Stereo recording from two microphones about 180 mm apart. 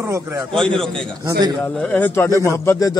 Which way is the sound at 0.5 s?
5° left (ahead or behind).